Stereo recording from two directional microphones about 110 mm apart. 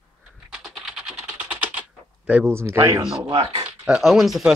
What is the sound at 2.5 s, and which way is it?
Speech, 25° right (ahead or behind).